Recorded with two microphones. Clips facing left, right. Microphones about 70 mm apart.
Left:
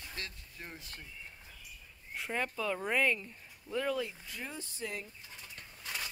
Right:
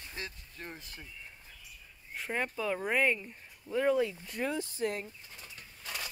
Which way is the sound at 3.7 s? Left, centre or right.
Centre.